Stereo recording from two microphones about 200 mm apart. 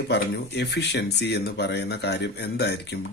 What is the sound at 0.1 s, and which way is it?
Speech, 55° left (ahead or behind).